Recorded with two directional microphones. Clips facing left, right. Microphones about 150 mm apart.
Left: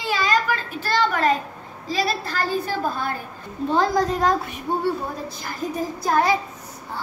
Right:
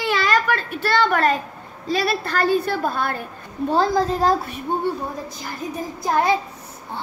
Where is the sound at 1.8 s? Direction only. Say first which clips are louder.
Right 2 dB; 60° right (ahead or behind).